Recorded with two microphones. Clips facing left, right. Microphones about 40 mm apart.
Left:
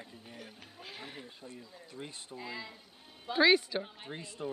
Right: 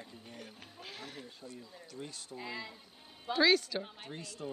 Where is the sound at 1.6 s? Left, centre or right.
Centre.